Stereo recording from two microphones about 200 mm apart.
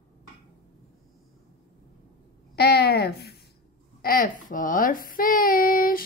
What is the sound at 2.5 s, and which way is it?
Babbling, 50° left (ahead or behind).